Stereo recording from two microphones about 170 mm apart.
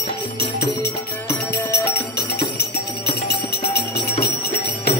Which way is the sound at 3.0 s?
75° left (ahead or behind).